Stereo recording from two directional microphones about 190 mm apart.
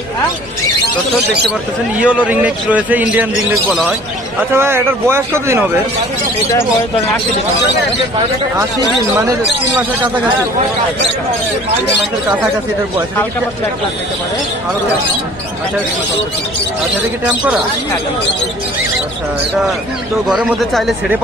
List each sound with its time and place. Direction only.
2.0 s a man's voice: 5° right (ahead or behind)
9.1 s a man's voice: 15° right (ahead or behind)
20.2 s speech: centre (ahead or behind)